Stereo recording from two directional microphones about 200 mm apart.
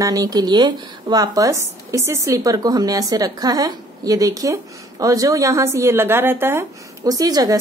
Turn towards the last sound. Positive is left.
turn(degrees=-20)  # may be behind; listen again after turning